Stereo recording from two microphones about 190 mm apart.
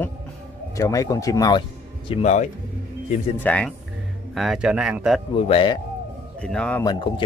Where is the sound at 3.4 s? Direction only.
5° left (ahead or behind).